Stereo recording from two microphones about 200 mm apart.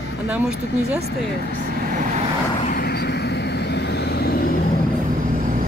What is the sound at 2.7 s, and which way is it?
Vehicle, 55° left (ahead or behind).